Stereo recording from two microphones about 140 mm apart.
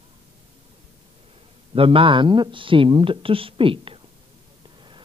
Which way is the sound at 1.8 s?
40° right (ahead or behind).